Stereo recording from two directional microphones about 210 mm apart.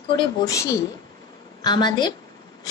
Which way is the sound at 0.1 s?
20° left (ahead or behind).